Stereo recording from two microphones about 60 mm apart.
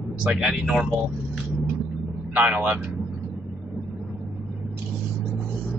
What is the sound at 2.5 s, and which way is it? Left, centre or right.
Speech, centre.